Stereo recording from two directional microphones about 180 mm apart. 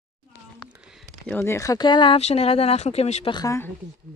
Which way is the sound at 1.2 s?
10° left (ahead or behind).